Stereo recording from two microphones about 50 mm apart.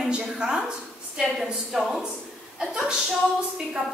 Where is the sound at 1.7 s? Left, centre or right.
Centre.